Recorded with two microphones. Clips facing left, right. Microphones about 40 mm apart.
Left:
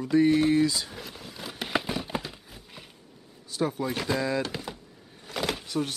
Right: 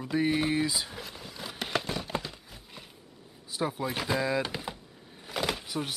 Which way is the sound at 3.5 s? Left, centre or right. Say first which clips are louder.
Left 3 dB; centre.